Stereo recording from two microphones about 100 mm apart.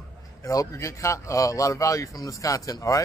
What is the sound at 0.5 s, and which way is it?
A man's voice, 35° left (ahead or behind).